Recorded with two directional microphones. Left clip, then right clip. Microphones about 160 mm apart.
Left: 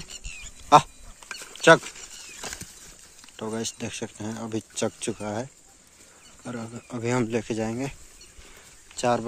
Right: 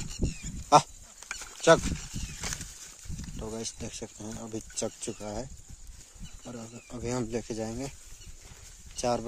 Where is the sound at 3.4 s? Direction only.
Centre (ahead or behind).